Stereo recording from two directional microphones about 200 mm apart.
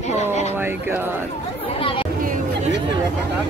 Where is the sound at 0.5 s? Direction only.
10° right (ahead or behind).